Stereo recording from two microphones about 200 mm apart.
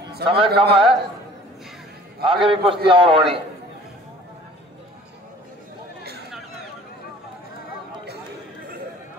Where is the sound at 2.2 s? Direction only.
25° right (ahead or behind).